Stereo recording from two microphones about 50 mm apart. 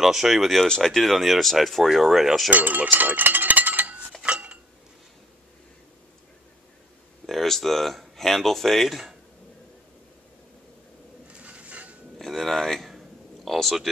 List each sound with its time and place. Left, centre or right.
0.0 s speech: centre
0.7 s speech: centre
2.5 s a sound: right
4.2 s dishes: right
7.2 s speech: centre
11.3 s dishes: right
12.2 s speech: centre